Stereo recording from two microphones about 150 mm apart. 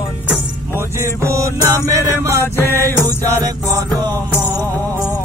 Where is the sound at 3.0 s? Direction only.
25° right (ahead or behind).